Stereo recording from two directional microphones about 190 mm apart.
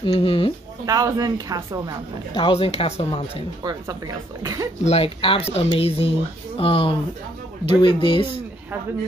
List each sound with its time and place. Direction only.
0.0 s speech: 25° left (ahead or behind)
0.8 s speech: 20° right (ahead or behind)
2.3 s speech: 25° left (ahead or behind)
3.6 s speech: 20° right (ahead or behind)
4.8 s speech: 30° left (ahead or behind)